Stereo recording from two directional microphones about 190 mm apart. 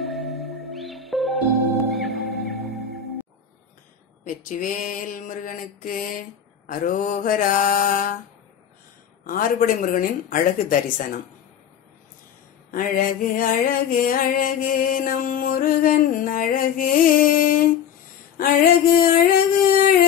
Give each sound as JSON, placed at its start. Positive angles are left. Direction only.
{"t": 0.0, "sound": "music", "side_deg": 0}
{"t": 4.2, "sound": "music", "side_deg": 45}
{"t": 9.2, "sound": "music", "side_deg": 45}
{"t": 12.7, "sound": "music", "side_deg": 45}